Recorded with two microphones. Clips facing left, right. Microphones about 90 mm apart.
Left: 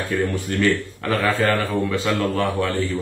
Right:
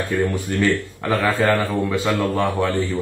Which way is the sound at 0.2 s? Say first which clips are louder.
Even; 15° right (ahead or behind).